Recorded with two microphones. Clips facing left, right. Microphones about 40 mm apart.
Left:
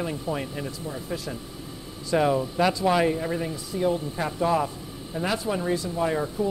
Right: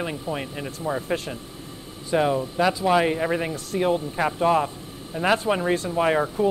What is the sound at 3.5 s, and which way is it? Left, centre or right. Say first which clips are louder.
Speech: right 2 dB; right.